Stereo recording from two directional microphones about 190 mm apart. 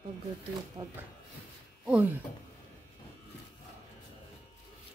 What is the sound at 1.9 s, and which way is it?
Speech, 10° right (ahead or behind).